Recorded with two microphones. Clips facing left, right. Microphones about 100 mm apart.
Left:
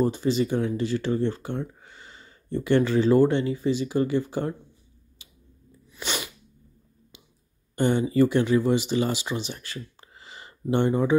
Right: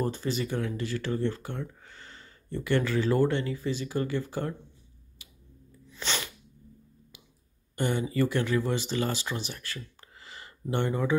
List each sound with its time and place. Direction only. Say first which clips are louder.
0.0 s speech: left 7 dB; 15° left (ahead or behind)
5.2 s a sound: right 1 dB; 25° left (ahead or behind)
5.9 s sneeze: left 2 dB; 10° left (ahead or behind)
7.7 s speech: left 6 dB; 25° left (ahead or behind)